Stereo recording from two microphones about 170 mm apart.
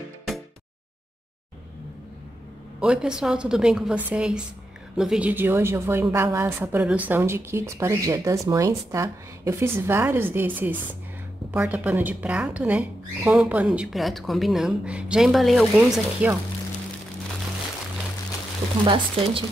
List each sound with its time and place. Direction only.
2.8 s a woman's voice: 5° right (ahead or behind)
18.9 s speech: 30° right (ahead or behind)